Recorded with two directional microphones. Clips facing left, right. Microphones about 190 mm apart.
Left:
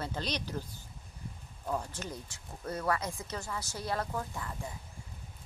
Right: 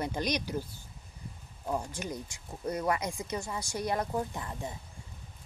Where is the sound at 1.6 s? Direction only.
10° right (ahead or behind).